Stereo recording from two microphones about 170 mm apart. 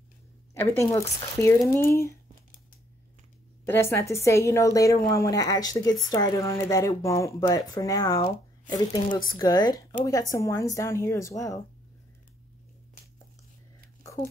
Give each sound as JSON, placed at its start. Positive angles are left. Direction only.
{"t": 0.6, "sound": "speech", "side_deg": 15}
{"t": 3.6, "sound": "a woman's voice", "side_deg": 15}